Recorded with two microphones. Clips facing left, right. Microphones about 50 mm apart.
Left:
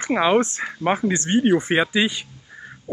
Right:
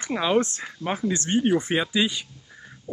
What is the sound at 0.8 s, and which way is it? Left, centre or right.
Speech, left.